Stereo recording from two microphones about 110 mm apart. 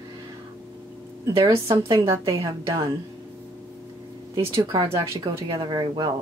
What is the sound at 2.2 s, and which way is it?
Speech, 35° right (ahead or behind).